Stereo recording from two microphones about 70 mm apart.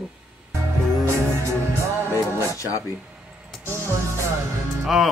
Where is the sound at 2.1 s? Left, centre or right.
Left.